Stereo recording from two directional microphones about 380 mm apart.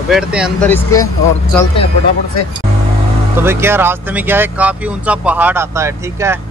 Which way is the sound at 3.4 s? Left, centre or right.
Centre.